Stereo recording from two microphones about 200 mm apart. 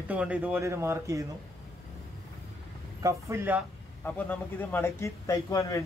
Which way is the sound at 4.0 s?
10° left (ahead or behind).